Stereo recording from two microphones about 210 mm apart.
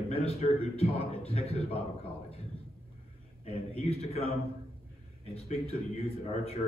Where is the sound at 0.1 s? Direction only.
30° left (ahead or behind).